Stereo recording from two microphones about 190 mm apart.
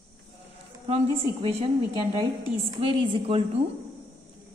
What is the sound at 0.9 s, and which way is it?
Speech, 30° right (ahead or behind).